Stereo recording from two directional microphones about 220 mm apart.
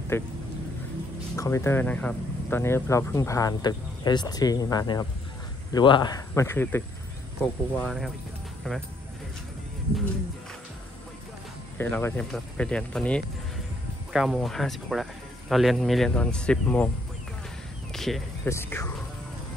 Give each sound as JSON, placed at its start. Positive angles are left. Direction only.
{"t": 0.1, "sound": "speech", "side_deg": 10}
{"t": 1.3, "sound": "speech", "side_deg": 15}
{"t": 11.8, "sound": "speech", "side_deg": 10}
{"t": 17.9, "sound": "a sound", "side_deg": 0}
{"t": 18.5, "sound": "speech", "side_deg": 10}